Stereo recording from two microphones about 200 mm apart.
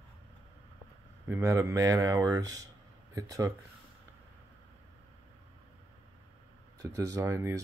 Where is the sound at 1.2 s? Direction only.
15° right (ahead or behind).